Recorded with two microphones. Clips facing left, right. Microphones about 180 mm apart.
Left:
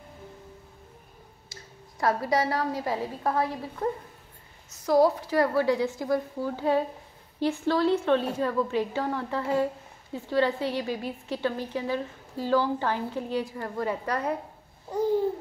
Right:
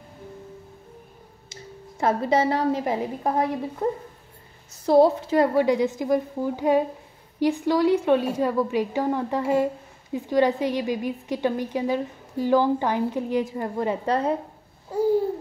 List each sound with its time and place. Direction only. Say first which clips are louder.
1.5 s a woman's voice: right 9 dB; 25° right (ahead or behind)